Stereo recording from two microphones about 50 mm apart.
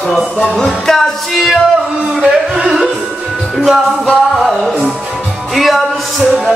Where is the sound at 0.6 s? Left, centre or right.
Centre.